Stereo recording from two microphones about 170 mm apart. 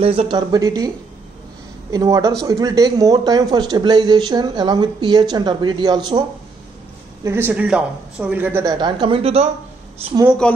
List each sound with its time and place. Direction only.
0.0 s speech: 35° right (ahead or behind)
7.2 s speech: 10° right (ahead or behind)
8.7 s speech: 25° right (ahead or behind)
10.4 s a man's voice: 5° left (ahead or behind)